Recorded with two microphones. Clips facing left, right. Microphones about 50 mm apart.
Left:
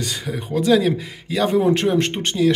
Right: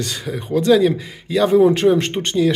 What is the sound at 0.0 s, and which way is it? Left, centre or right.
Speech, centre.